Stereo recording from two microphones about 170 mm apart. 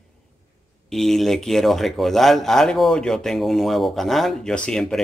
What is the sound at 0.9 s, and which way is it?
Speech, centre (ahead or behind).